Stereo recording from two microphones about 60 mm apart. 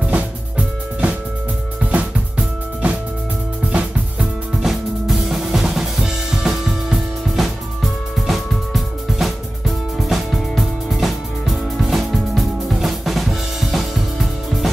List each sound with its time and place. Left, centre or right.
0.1 s music: right
4.2 s music: centre